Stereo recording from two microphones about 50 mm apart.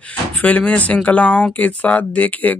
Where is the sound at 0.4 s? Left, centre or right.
Left.